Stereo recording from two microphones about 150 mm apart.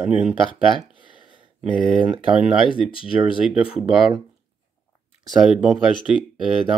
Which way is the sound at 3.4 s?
5° right (ahead or behind).